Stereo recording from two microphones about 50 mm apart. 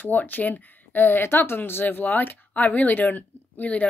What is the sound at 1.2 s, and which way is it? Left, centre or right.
Speech, left.